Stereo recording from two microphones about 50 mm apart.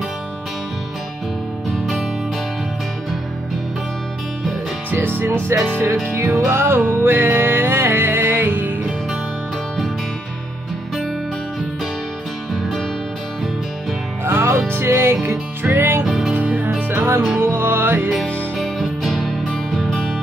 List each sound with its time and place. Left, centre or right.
4.9 s music: right
14.2 s music: right
16.0 s music: centre
16.3 s music: right
17.4 s music: right
18.1 s music: centre